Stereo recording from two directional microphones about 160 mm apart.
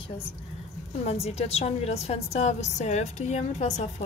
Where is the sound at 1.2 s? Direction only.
40° left (ahead or behind).